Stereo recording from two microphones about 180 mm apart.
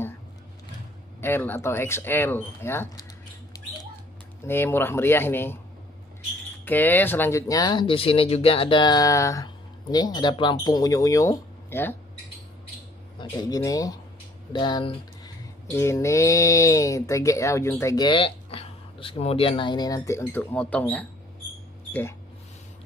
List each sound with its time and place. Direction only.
1.2 s speech: 10° left (ahead or behind)
3.5 s squawk: 20° left (ahead or behind)
4.5 s speech: 10° left (ahead or behind)
6.6 s speech: 10° left (ahead or behind)
13.2 s speech: 20° left (ahead or behind)